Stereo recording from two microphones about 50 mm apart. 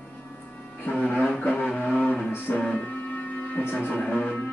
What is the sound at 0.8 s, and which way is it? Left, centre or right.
Music, left.